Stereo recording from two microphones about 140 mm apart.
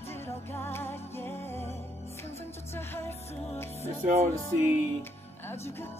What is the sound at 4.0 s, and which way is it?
Music, 60° right (ahead or behind).